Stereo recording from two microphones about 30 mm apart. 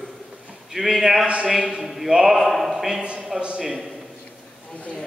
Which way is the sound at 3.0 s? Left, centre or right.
Right.